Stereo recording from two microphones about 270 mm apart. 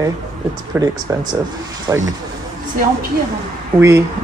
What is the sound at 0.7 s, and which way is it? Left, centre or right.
Speech, centre.